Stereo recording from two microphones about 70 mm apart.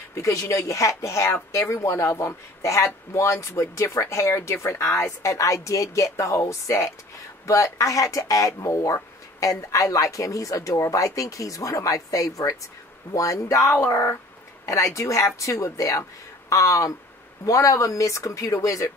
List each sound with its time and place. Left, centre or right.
0.1 s speech: left